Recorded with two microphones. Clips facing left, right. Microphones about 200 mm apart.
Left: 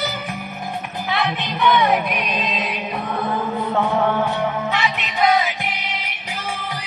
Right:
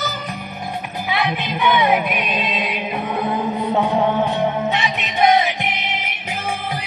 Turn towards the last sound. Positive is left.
turn(degrees=-25)  # may be behind; listen again after turning